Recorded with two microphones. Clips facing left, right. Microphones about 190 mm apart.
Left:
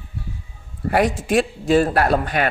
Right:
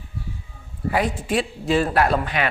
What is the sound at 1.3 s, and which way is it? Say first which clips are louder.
Speech: left 4 dB; 45° left (ahead or behind).